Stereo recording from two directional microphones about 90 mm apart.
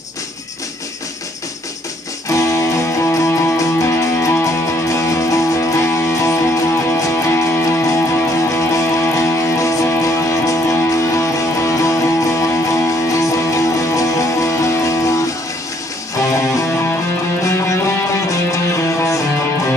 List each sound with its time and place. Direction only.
2.2 s music: 35° left (ahead or behind)
16.3 s music: 35° left (ahead or behind)